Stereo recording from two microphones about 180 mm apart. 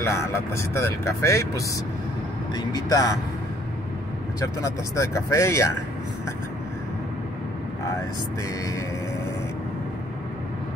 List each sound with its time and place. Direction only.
0.0 s speech: 15° left (ahead or behind)
4.4 s speech: 15° left (ahead or behind)